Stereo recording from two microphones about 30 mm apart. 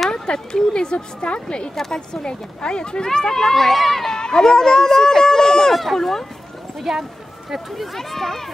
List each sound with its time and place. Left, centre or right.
0.1 s speech: left
1.8 s speech: left
3.5 s speech: centre
4.1 s speech: left
5.0 s a sound: centre
5.9 s speech: centre
6.8 s speech: centre
7.7 s speech: centre